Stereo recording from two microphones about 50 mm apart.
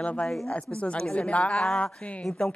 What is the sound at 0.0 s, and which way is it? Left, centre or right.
A woman's voice, left.